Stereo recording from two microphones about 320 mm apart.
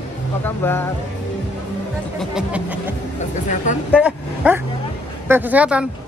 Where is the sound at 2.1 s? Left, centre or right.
Centre.